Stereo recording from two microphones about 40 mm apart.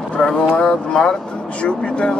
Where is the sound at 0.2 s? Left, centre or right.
Centre.